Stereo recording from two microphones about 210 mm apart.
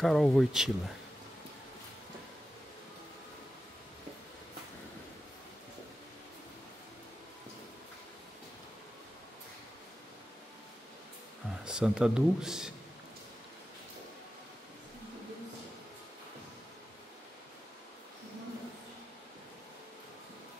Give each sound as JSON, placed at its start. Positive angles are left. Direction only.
{"t": 0.0, "sound": "speech", "side_deg": 0}
{"t": 11.6, "sound": "speech", "side_deg": -5}